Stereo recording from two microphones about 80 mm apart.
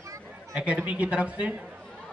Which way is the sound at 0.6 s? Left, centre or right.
Centre.